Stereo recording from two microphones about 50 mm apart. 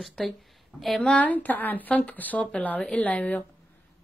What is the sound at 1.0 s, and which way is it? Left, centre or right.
Speech, left.